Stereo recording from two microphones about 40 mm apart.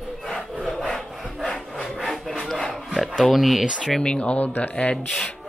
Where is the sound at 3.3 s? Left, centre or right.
Centre.